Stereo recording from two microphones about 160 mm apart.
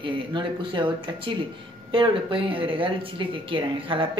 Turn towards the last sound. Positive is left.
turn(degrees=-30)  # may be behind; listen again after turning